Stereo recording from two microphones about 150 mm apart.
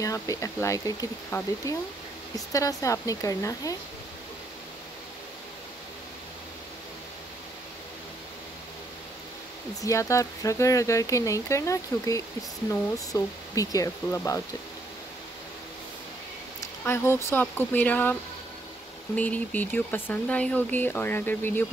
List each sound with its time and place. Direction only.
0.0 s speech: 20° left (ahead or behind)
9.8 s speech: 20° left (ahead or behind)
16.8 s speech: 15° left (ahead or behind)
19.1 s speech: 10° left (ahead or behind)